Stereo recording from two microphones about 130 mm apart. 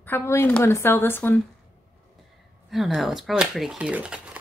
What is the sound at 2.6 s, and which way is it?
Speech, centre (ahead or behind).